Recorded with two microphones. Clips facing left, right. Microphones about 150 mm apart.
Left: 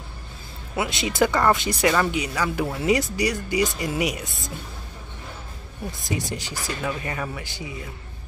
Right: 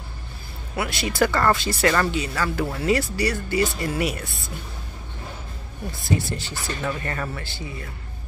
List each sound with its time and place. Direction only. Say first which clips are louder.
0.7 s speech: left 1 dB; 20° left (ahead or behind)
5.9 s speech: right 3 dB; 15° left (ahead or behind)